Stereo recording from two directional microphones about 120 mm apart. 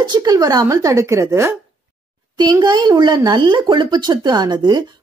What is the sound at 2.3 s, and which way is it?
Speech, 35° right (ahead or behind).